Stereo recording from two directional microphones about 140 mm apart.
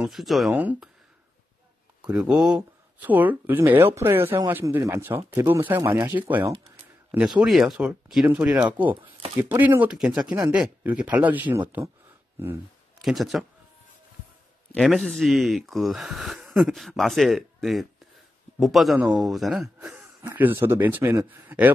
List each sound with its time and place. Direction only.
0.0 s speech: centre (ahead or behind)
0.6 s speech: 10° right (ahead or behind)
2.0 s speech: 5° right (ahead or behind)
13.0 s speech: centre (ahead or behind)
14.7 s speech: centre (ahead or behind)